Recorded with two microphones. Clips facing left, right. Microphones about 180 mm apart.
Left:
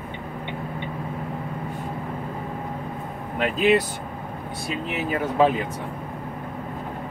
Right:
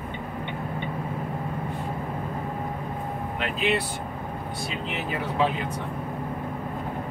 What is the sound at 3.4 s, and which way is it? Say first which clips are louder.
Speech: left 7 dB; 45° left (ahead or behind).